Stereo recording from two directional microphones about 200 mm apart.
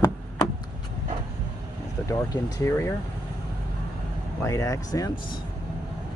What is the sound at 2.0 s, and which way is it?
Speech, 15° left (ahead or behind).